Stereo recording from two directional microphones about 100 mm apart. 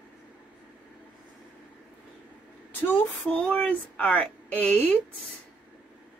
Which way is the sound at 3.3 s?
10° left (ahead or behind).